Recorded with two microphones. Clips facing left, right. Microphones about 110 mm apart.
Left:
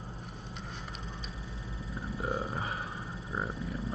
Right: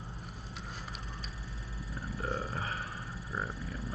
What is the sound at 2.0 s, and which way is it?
Wild animals, 20° left (ahead or behind).